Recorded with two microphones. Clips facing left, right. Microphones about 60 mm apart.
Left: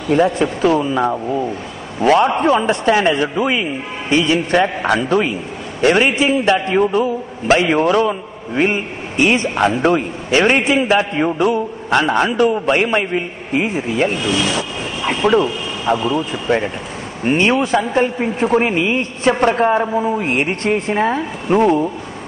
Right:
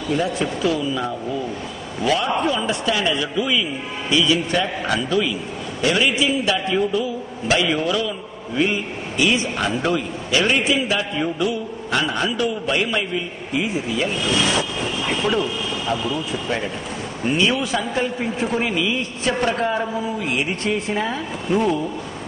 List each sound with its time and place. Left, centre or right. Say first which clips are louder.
0.1 s a man's voice: left 8 dB; left
17.2 s a man's voice: left 5 dB; left